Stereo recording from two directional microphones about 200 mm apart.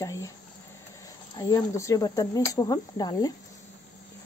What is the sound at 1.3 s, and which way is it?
Speech, 15° left (ahead or behind).